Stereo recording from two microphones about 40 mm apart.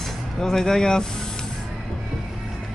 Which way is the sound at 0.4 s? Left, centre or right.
Centre.